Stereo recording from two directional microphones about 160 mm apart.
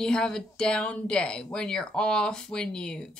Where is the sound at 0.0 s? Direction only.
5° left (ahead or behind).